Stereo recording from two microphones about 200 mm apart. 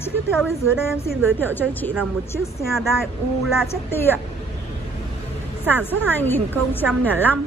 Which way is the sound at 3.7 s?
10° left (ahead or behind).